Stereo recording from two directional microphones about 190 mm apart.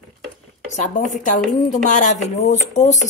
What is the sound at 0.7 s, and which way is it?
Speech, 40° left (ahead or behind).